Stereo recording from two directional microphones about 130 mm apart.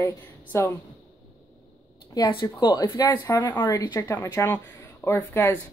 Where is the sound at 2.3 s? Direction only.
35° left (ahead or behind).